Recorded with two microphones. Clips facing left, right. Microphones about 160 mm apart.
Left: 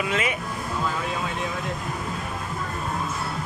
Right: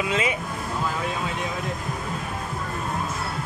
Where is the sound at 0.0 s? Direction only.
20° right (ahead or behind).